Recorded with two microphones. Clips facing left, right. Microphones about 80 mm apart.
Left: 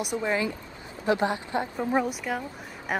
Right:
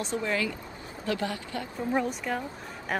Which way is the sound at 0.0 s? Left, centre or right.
Centre.